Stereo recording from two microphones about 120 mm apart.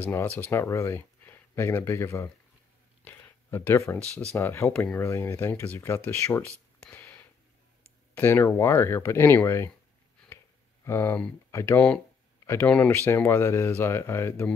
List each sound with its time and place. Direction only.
0.0 s speech: 15° left (ahead or behind)
3.0 s a sound: 15° left (ahead or behind)
4.4 s speech: 20° left (ahead or behind)
4.7 s speech: 5° left (ahead or behind)
5.0 s speech: 25° left (ahead or behind)
7.0 s a sound: 20° left (ahead or behind)
8.1 s speech: 20° left (ahead or behind)
10.9 s speech: 20° left (ahead or behind)
12.9 s speech: 20° left (ahead or behind)